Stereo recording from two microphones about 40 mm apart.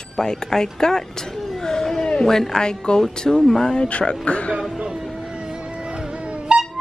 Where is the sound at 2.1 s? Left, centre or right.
Centre.